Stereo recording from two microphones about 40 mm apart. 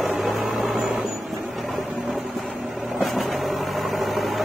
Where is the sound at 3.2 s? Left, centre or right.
Centre.